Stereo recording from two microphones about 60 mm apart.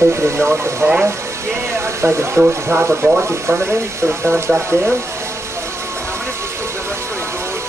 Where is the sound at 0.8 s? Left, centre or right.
Right.